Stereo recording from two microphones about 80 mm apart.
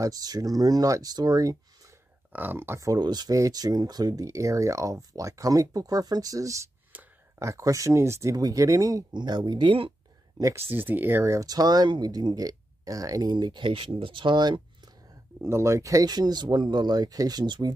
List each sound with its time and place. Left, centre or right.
0.0 s speech: right
2.3 s speech: right
2.8 s speech: right
3.3 s speech: right
6.9 s a sound: right
7.3 s speech: right
9.1 s speech: right
10.5 s speech: right
11.4 s speech: right
13.3 s speech: right
15.4 s speech: right